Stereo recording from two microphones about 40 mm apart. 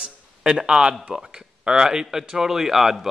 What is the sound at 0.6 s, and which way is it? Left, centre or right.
A man's voice, centre.